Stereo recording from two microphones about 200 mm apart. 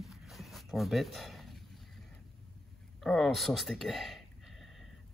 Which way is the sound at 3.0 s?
Centre (ahead or behind).